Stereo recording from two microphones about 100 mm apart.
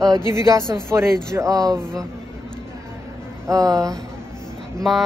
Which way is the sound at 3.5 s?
35° right (ahead or behind).